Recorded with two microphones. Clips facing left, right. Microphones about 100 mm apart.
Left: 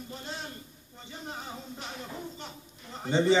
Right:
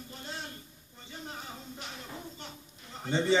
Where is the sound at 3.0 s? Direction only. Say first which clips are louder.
Left 4 dB; 20° left (ahead or behind).